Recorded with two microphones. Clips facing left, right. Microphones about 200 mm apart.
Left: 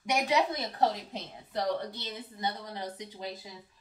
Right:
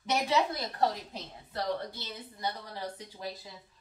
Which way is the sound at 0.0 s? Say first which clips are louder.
Left 1 dB; 15° left (ahead or behind).